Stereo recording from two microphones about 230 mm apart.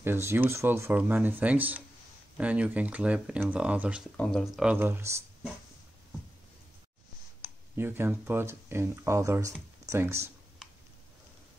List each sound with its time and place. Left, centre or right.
0.0 s speech: centre
7.4 s speech: centre